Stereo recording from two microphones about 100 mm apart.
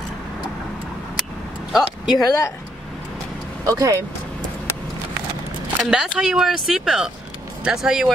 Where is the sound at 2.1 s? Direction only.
30° left (ahead or behind).